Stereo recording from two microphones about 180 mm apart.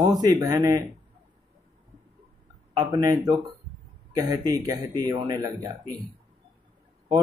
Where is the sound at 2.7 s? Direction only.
20° right (ahead or behind).